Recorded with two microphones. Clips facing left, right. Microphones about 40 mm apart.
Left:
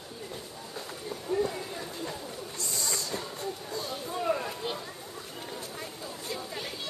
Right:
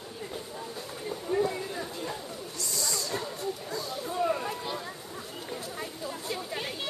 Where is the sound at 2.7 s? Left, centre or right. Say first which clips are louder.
Right 1 dB; left.